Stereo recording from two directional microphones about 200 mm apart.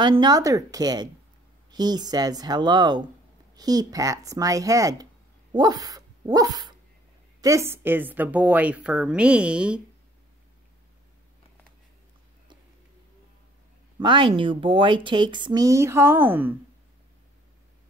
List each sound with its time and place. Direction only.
0.0 s a woman's voice: 20° right (ahead or behind); by 9.8 s 5° right (ahead or behind)
13.9 s speech: 25° right (ahead or behind)